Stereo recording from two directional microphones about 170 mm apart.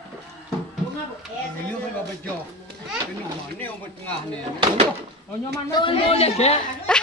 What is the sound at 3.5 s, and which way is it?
Speech, 10° left (ahead or behind).